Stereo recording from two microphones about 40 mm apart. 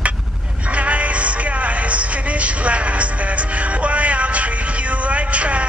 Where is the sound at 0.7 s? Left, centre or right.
Right.